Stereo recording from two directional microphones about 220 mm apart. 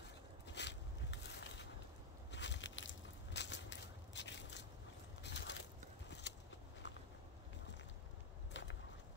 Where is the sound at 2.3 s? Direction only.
55° left (ahead or behind).